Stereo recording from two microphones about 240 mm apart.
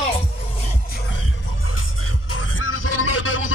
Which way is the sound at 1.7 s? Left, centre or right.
Left.